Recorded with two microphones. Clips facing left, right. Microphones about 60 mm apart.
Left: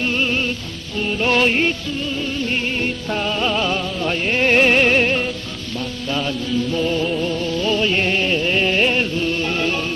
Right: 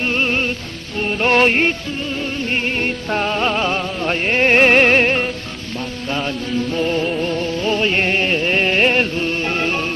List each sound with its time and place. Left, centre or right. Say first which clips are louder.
0.0 s music: right 1 dB; right